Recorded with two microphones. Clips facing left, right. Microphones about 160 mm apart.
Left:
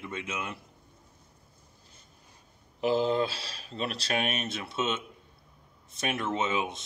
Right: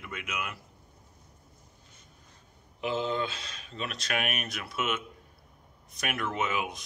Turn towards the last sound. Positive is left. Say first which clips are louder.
# left 2 dB
turn(degrees=25)  # may be behind; listen again after turning